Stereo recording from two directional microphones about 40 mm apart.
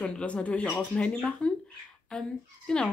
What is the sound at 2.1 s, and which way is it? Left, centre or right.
Speech, centre.